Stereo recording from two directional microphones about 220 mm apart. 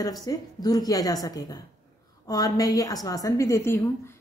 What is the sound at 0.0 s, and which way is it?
A woman's voice, 15° left (ahead or behind).